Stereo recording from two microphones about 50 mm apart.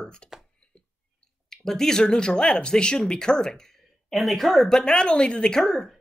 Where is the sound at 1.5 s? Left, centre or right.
Centre.